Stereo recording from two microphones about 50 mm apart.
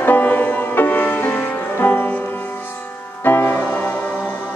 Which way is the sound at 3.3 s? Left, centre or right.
Left.